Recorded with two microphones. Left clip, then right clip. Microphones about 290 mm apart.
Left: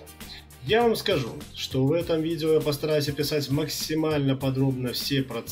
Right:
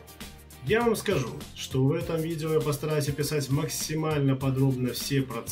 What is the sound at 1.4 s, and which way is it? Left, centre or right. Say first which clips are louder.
Speech: left 2 dB; centre.